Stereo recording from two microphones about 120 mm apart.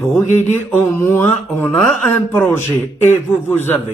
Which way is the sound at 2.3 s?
15° left (ahead or behind).